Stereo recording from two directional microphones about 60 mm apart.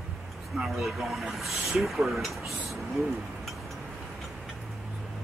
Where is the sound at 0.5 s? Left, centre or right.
Centre.